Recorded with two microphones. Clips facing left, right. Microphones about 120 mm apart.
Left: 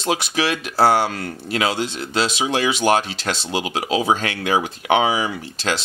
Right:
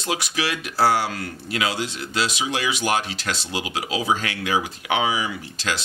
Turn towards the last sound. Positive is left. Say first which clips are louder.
# left 4 dB
turn(degrees=30)  # may be behind; listen again after turning